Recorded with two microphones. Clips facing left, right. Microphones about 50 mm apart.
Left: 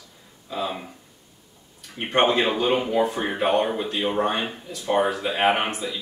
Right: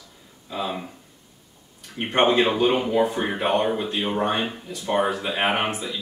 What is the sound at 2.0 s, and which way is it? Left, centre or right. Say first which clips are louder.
Speech: right 1 dB; centre.